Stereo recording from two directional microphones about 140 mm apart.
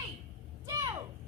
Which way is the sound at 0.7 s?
20° right (ahead or behind).